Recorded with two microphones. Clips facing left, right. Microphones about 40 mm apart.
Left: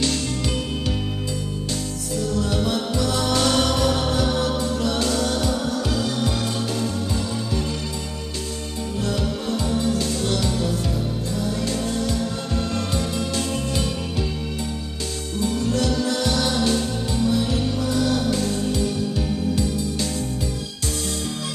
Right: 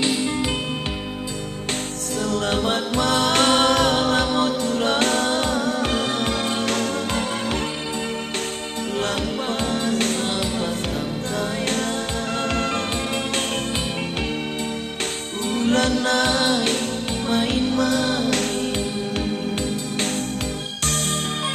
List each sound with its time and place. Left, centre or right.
0.0 s music: right
2.1 s music: right
8.9 s music: right
10.2 s music: right
11.3 s music: right
15.3 s music: right
19.5 s music: right